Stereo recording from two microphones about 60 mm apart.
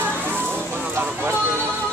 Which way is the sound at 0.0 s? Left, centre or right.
Right.